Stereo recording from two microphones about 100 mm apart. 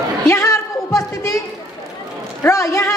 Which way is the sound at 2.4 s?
30° left (ahead or behind).